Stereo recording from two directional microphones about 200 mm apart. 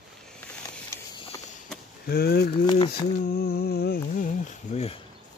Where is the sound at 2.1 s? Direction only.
50° left (ahead or behind).